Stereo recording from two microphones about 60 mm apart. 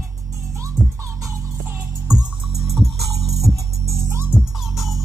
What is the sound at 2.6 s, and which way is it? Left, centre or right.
Music, centre.